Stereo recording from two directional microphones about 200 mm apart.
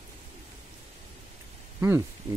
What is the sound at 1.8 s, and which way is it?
Speech, 10° right (ahead or behind).